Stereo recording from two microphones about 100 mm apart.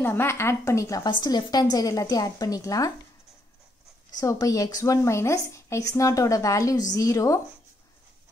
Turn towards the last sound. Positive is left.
turn(degrees=30)  # may be behind; listen again after turning